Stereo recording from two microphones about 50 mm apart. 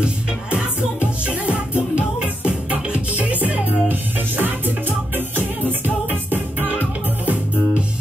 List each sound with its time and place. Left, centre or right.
0.0 s music: right
6.0 s music: right